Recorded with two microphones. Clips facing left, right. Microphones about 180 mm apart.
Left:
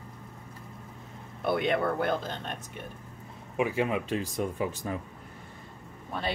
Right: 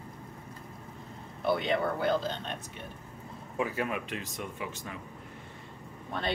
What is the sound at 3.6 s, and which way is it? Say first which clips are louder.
Speech: left 4 dB; 25° left (ahead or behind).